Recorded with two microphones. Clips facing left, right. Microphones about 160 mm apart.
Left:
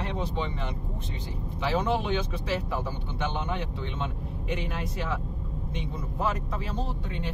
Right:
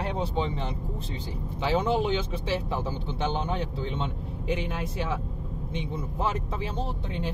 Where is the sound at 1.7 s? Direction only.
30° right (ahead or behind).